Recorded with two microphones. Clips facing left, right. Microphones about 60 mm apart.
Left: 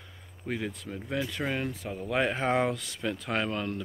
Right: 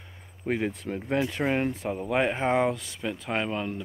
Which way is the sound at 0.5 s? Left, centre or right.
Right.